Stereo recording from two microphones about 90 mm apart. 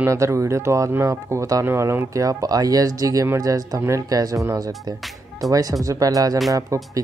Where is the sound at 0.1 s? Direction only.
35° right (ahead or behind).